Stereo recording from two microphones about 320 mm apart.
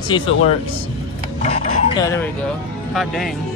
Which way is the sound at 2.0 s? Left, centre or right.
Centre.